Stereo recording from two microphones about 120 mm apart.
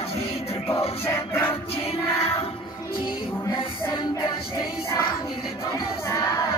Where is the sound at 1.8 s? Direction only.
55° left (ahead or behind).